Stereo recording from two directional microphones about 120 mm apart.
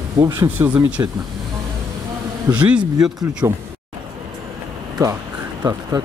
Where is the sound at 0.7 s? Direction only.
10° right (ahead or behind).